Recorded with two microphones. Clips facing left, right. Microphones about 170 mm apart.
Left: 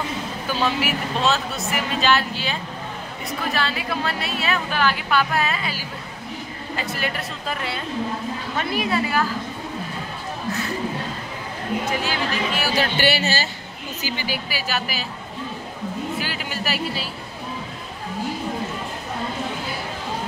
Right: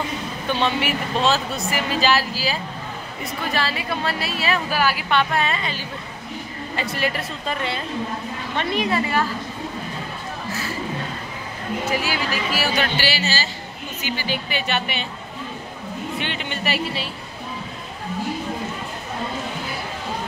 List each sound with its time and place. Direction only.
0.5 s speech: 5° left (ahead or behind)
5.1 s speech: 5° left (ahead or behind)
11.9 s speech: 10° right (ahead or behind)
12.9 s speech: 55° left (ahead or behind)
14.1 s speech: 10° left (ahead or behind)
16.2 s speech: 5° left (ahead or behind)